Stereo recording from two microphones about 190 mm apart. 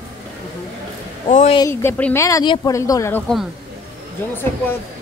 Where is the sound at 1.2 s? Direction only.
35° left (ahead or behind).